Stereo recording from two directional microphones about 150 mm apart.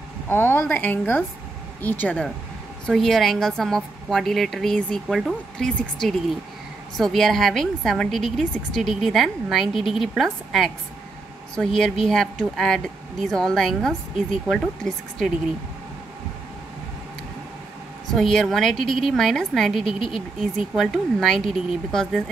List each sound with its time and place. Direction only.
0.3 s a woman's voice: 15° left (ahead or behind)
18.1 s a woman's voice: centre (ahead or behind)
19.9 s a woman's voice: 35° left (ahead or behind)
20.3 s a woman's voice: centre (ahead or behind)